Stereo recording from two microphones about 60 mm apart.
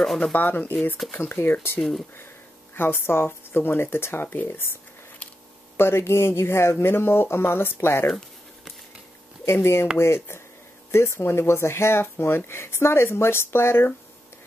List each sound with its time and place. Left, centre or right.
0.2 s speech: left
1.8 s speech: centre
2.7 s speech: left
5.8 s speech: left
9.4 s speech: left